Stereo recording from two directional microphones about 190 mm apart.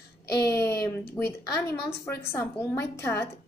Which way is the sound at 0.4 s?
15° left (ahead or behind).